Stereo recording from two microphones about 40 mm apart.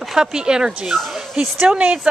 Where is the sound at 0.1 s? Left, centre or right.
Centre.